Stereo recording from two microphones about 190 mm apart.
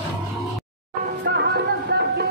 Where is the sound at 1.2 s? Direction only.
60° right (ahead or behind).